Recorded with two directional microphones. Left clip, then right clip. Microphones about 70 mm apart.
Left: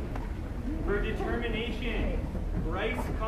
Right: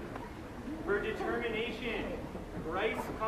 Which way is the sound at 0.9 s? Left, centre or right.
Centre.